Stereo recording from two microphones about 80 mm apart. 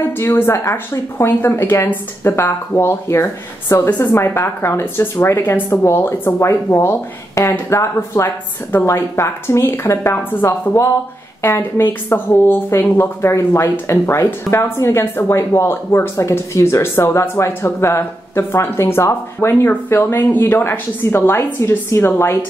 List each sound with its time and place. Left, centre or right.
0.2 s speech: left